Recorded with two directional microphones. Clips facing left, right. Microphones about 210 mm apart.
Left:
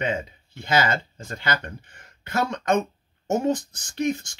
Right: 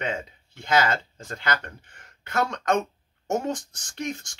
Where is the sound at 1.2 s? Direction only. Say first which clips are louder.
Left 1 dB; 15° left (ahead or behind).